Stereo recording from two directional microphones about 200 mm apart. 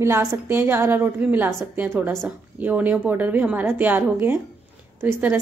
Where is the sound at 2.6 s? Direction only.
10° right (ahead or behind).